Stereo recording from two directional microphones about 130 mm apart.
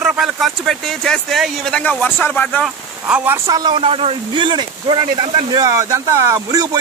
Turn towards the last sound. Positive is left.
turn(degrees=-30)  # may be behind; listen again after turning